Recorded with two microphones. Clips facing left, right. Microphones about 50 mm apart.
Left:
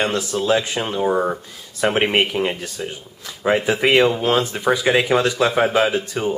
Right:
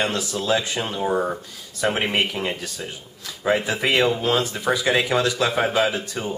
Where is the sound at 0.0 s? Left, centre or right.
Centre.